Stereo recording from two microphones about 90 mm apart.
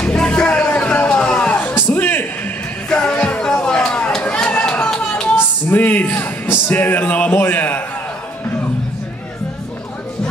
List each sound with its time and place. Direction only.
0.0 s music: 10° left (ahead or behind)
5.3 s speech: 20° left (ahead or behind)